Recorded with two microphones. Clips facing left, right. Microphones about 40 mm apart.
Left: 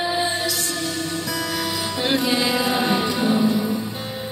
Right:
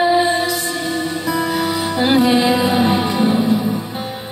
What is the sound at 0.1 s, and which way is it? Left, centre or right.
Music, right.